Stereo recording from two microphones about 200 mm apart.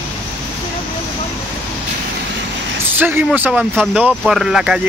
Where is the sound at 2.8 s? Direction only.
10° right (ahead or behind).